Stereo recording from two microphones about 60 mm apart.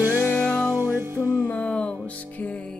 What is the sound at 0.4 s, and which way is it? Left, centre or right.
Music, centre.